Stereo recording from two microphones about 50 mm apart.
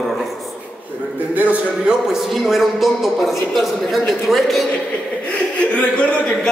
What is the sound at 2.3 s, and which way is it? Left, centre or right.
A man's voice, centre.